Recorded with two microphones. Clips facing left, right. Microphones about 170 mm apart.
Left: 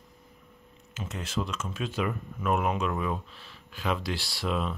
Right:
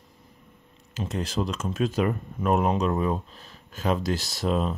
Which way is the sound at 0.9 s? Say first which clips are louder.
Right 5 dB; 35° right (ahead or behind).